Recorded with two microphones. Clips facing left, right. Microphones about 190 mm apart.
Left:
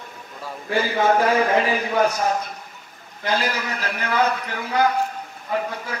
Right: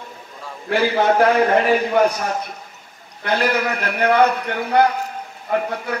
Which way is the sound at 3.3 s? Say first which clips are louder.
Right 5 dB; 60° right (ahead or behind).